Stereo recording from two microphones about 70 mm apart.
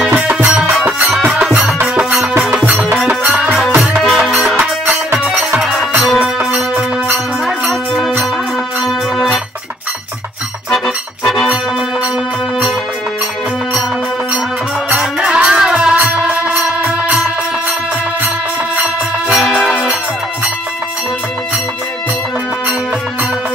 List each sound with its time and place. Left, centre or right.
0.0 s music: centre
5.6 s music: centre
14.9 s music: centre
19.3 s music: centre